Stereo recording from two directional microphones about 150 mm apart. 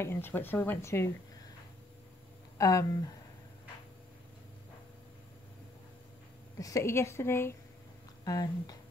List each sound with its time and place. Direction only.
0.0 s speech: 15° left (ahead or behind)
2.5 s speech: 20° left (ahead or behind)
6.6 s speech: 20° left (ahead or behind)